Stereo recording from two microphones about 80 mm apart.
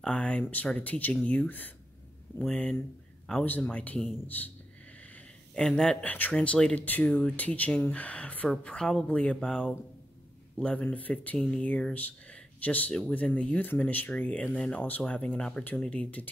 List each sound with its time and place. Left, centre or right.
0.0 s speech: centre
2.3 s a sound: left
3.4 s speech: left
5.6 s speech: centre